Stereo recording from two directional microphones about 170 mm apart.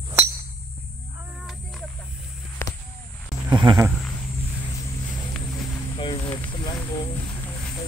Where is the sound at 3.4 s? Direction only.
25° right (ahead or behind).